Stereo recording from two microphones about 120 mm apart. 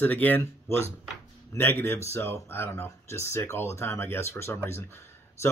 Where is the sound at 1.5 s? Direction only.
20° left (ahead or behind).